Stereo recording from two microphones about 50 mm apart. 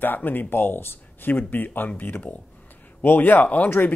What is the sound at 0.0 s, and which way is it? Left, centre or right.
A man's voice, left.